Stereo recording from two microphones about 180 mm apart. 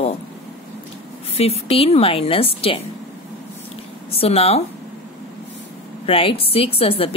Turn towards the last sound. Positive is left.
turn(degrees=30)  # may be behind; listen again after turning